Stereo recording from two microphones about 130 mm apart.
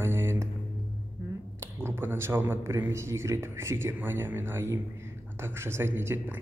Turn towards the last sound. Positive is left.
turn(degrees=-15)  # may be behind; listen again after turning